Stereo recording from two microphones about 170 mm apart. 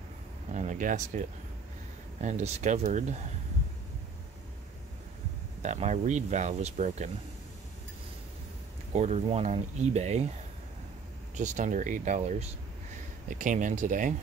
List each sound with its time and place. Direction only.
0.5 s speech: 45° right (ahead or behind)
2.2 s speech: 40° right (ahead or behind)
5.6 s speech: 45° right (ahead or behind)
8.9 s speech: 40° right (ahead or behind)
11.3 s speech: 45° right (ahead or behind)